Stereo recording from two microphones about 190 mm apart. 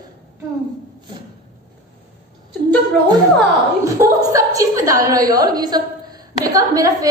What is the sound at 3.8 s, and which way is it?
A woman's voice, 15° right (ahead or behind).